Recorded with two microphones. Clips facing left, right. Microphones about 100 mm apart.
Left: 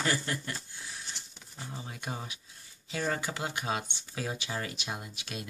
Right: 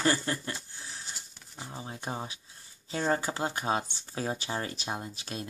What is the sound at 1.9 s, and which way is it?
Speech, 30° right (ahead or behind).